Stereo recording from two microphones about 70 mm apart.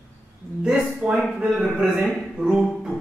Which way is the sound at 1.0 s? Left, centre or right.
Centre.